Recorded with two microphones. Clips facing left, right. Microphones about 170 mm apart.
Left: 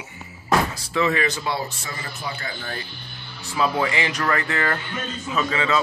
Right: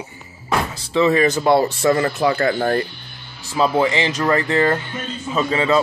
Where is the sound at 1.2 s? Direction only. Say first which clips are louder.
Right 11 dB; 50° right (ahead or behind).